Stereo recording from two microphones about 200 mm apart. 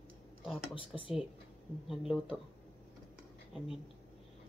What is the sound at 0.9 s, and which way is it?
Speech, centre (ahead or behind).